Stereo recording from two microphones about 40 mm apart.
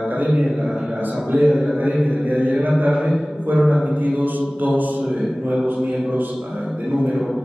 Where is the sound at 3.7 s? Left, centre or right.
Right.